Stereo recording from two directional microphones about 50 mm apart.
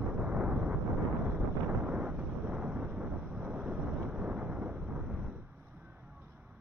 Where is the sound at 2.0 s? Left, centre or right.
Right.